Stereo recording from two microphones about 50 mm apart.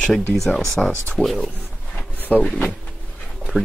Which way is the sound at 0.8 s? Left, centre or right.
Centre.